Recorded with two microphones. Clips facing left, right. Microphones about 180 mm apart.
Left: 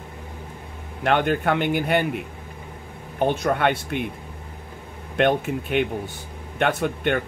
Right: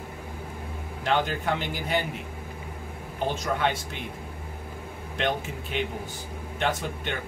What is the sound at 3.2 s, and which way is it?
Speech, 60° left (ahead or behind).